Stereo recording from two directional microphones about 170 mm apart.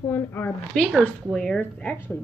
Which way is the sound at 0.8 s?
Centre (ahead or behind).